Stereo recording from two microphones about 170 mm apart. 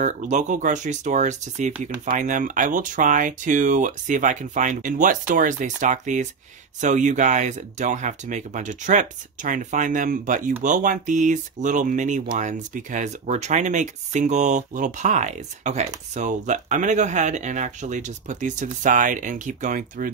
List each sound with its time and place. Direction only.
0.0 s speech: 45° right (ahead or behind)